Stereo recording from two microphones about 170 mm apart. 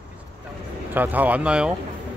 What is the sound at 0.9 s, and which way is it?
Speech, 10° right (ahead or behind).